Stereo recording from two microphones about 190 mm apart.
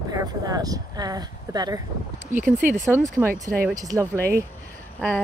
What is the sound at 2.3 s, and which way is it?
Speech, 40° right (ahead or behind).